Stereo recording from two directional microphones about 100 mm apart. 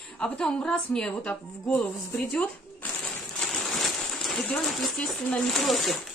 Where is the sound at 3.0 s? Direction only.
5° left (ahead or behind).